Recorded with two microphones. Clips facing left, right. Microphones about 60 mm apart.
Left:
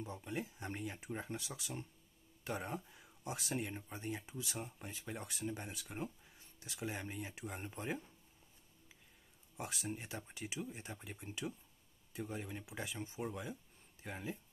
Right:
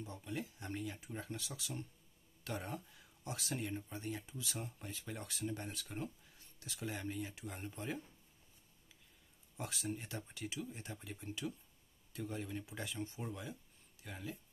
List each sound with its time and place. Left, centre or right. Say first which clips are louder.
0.0 s speech: left 1 dB; left
9.6 s speech: right 1 dB; centre